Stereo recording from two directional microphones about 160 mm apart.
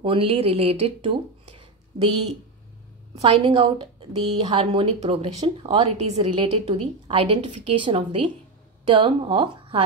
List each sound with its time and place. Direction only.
0.0 s speech: 35° right (ahead or behind)
3.2 s speech: 35° right (ahead or behind)